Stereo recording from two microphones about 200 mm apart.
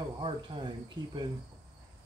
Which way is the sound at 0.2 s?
25° right (ahead or behind).